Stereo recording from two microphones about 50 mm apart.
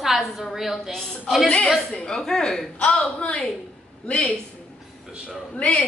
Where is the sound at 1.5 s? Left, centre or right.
Left.